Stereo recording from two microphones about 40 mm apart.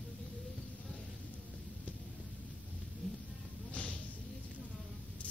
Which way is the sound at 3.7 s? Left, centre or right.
Left.